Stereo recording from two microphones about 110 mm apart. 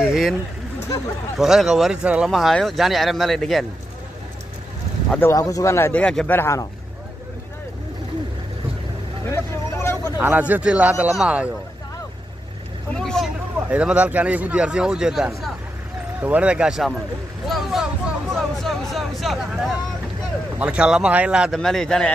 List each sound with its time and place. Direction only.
0.0 s a sound: centre (ahead or behind)
1.4 s speech: 5° right (ahead or behind)
5.2 s speech: 30° left (ahead or behind)
9.3 s vehicle: 25° left (ahead or behind)
10.1 s a man's voice: 20° right (ahead or behind)
12.9 s vehicle: 5° left (ahead or behind)
13.6 s a man's voice: 10° right (ahead or behind)
21.5 s speech: 5° left (ahead or behind)